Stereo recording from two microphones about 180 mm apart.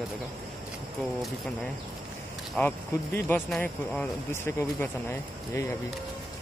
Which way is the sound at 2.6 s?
10° left (ahead or behind).